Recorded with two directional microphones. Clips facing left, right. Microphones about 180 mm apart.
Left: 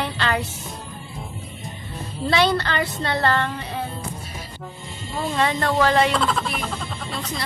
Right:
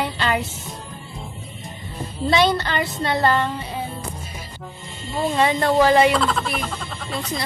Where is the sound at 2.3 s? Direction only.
15° right (ahead or behind).